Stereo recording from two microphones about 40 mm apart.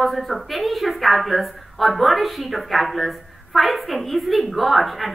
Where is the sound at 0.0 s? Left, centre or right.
Centre.